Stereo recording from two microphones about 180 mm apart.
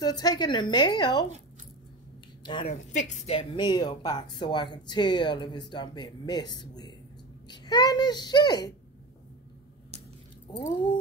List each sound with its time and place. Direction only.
0.0 s speech: 20° left (ahead or behind)
2.4 s speech: 30° left (ahead or behind)
10.6 s speech: 25° left (ahead or behind)